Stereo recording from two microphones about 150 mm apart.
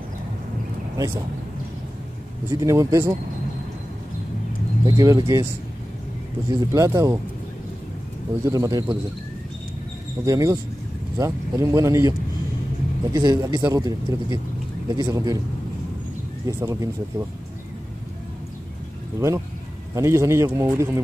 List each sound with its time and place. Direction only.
0.9 s speech: 20° right (ahead or behind)
2.5 s speech: 20° right (ahead or behind)
4.8 s speech: 25° right (ahead or behind)
6.5 s speech: 20° right (ahead or behind)
8.5 s speech: 25° right (ahead or behind)
10.2 s speech: 20° right (ahead or behind)
16.4 s speech: 20° right (ahead or behind)
19.1 s speech: 20° right (ahead or behind)